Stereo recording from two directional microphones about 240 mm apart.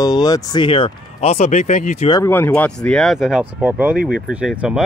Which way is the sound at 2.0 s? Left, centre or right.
Centre.